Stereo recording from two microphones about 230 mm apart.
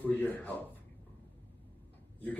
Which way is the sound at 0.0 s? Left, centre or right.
Centre.